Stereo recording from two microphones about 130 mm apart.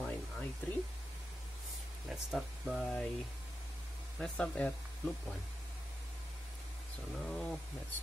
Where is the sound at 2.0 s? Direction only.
5° right (ahead or behind).